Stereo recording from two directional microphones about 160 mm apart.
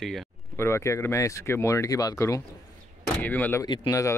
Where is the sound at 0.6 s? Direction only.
15° left (ahead or behind).